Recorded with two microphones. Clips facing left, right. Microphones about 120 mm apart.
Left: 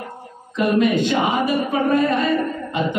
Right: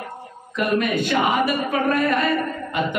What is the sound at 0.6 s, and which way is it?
A man's voice, 20° left (ahead or behind).